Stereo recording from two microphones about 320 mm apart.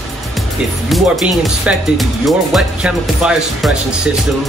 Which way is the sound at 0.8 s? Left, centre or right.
Centre.